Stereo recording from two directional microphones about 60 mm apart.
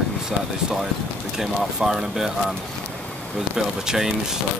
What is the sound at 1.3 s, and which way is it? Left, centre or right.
Speech, centre.